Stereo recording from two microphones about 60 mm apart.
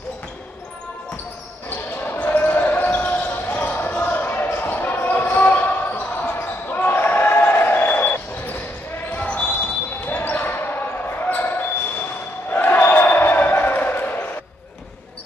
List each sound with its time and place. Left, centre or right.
1.7 s basketball bounce: left